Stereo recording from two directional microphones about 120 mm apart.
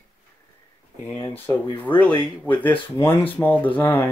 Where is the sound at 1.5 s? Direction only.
15° left (ahead or behind).